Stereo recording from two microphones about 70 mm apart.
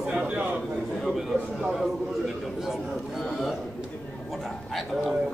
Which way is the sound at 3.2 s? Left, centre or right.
Centre.